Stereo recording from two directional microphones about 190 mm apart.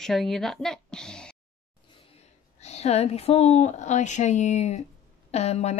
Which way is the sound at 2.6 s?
35° left (ahead or behind).